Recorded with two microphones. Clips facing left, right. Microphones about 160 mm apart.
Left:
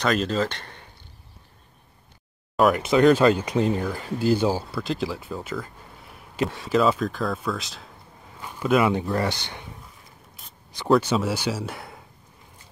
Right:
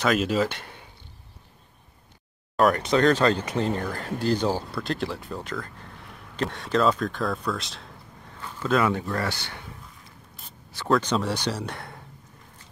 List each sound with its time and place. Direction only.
0.0 s speech: 5° right (ahead or behind)
2.5 s speech: 5° left (ahead or behind)
8.4 s speech: 15° left (ahead or behind)
10.9 s speech: 5° left (ahead or behind)